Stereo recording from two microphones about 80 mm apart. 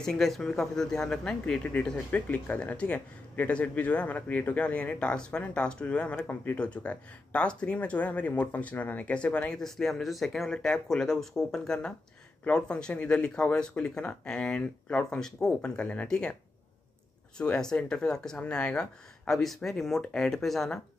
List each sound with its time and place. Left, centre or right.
0.0 s speech: centre
1.4 s a man's voice: centre
17.4 s a man's voice: centre